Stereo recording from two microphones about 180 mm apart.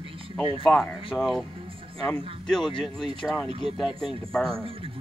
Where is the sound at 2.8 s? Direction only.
Centre (ahead or behind).